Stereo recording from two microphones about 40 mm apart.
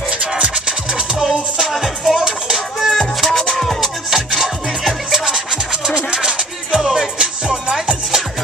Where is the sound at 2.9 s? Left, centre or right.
Centre.